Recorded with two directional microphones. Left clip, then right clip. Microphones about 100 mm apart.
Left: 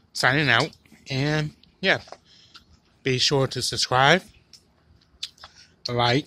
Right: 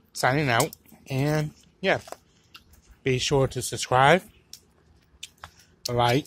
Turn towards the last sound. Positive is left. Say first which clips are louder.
# left 1 dB
turn(degrees=15)  # may be behind; listen again after turning